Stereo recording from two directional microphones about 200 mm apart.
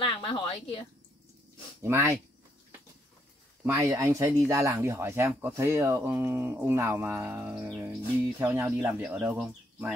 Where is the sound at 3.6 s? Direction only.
15° right (ahead or behind).